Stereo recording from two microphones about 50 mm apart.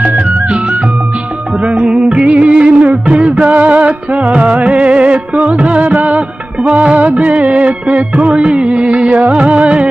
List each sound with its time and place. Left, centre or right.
1.6 s music: right